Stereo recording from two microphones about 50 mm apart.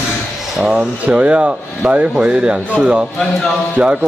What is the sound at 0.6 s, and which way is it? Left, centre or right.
Speech, right.